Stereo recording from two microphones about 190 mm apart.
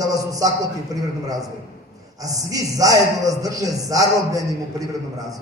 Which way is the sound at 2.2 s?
20° right (ahead or behind).